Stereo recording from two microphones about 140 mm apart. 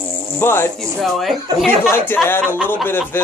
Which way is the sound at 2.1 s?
15° left (ahead or behind).